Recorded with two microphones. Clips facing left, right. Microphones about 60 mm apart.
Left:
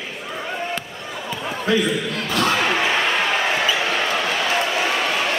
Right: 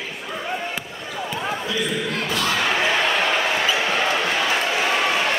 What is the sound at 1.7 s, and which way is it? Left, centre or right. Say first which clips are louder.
Speech: left 9 dB; left.